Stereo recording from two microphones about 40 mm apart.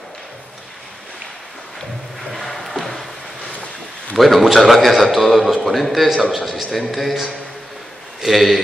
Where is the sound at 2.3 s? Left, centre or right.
Centre.